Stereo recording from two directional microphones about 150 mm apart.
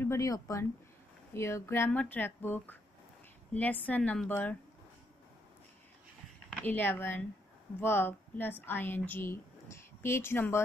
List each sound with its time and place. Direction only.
0.0 s speech: 20° left (ahead or behind)
6.6 s a woman's voice: 10° left (ahead or behind)